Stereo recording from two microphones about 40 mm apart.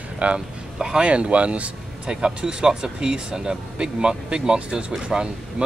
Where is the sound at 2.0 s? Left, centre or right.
Centre.